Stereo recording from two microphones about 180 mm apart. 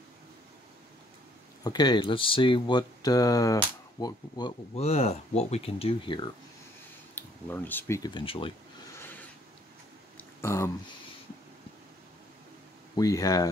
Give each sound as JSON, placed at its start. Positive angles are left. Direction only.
{"t": 1.6, "sound": "speech", "side_deg": 25}
{"t": 4.7, "sound": "speech", "side_deg": 35}
{"t": 7.2, "sound": "speech", "side_deg": 10}
{"t": 8.0, "sound": "speech", "side_deg": 25}
{"t": 8.9, "sound": "a sound", "side_deg": 10}
{"t": 12.9, "sound": "speech", "side_deg": 20}